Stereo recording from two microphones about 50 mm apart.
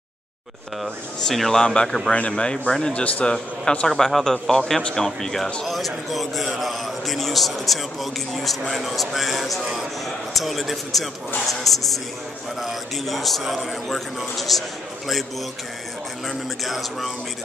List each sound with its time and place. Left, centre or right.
1.2 s a man's voice: centre
2.9 s speech: left
3.8 s a man's voice: centre
16.3 s a man's voice: centre